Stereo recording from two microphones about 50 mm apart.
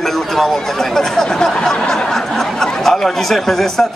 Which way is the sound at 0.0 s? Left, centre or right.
Centre.